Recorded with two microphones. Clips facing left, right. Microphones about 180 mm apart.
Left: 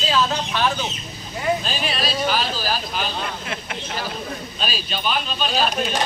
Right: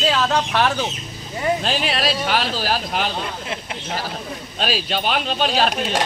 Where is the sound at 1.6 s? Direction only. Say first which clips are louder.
Right 4 dB; 85° right.